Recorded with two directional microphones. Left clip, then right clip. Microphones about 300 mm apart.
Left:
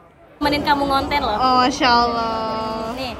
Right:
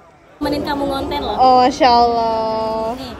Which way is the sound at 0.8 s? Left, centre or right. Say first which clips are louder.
Left 2 dB; centre.